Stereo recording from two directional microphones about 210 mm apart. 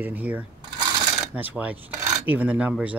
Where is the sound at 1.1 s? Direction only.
5° right (ahead or behind).